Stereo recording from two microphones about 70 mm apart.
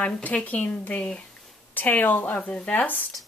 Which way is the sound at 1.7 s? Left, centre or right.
Left.